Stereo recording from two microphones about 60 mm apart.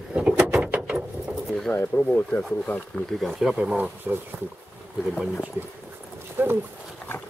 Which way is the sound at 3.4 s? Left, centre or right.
Centre.